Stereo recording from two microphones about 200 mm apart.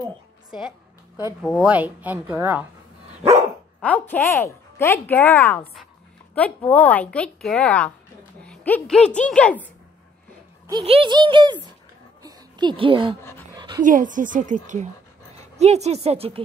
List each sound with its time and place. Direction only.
0.5 s a woman's voice: 5° right (ahead or behind)
3.8 s speech: 10° left (ahead or behind)
10.7 s speech: 25° right (ahead or behind)
12.2 s a sound: 20° right (ahead or behind)
13.6 s dog: 20° right (ahead or behind)
13.8 s a woman's voice: 40° right (ahead or behind)